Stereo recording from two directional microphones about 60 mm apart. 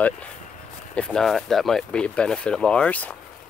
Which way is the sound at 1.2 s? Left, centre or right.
Centre.